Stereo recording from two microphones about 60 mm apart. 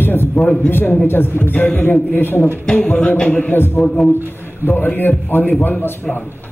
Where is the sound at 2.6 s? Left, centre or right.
Centre.